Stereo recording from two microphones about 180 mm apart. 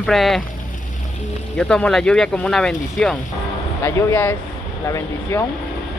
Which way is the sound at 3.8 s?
15° left (ahead or behind).